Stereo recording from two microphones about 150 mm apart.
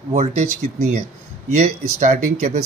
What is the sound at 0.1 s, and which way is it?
Speech, 45° right (ahead or behind).